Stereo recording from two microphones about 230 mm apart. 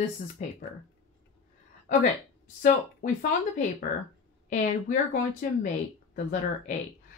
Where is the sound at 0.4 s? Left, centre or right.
Left.